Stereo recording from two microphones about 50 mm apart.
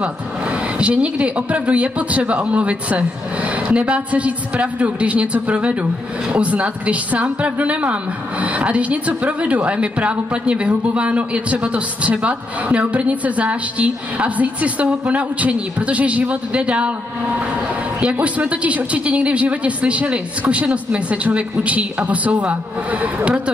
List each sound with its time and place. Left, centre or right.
0.0 s a man's voice: right